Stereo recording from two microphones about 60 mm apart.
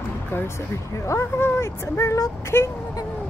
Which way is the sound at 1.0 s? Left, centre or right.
Left.